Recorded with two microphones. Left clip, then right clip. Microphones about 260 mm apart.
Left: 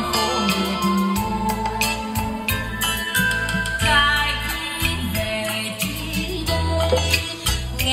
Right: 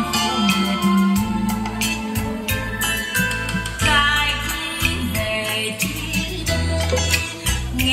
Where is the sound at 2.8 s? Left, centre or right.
Left.